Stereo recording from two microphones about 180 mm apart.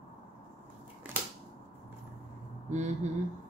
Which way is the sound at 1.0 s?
10° right (ahead or behind).